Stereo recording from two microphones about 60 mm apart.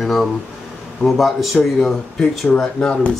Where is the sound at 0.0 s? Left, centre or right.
Centre.